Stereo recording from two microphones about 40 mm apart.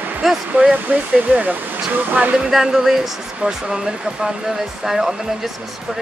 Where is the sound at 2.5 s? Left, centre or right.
Centre.